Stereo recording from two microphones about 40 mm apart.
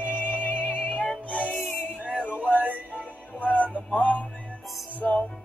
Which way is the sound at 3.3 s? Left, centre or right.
Left.